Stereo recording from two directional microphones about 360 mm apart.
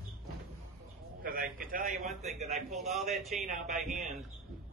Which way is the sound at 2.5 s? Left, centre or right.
Centre.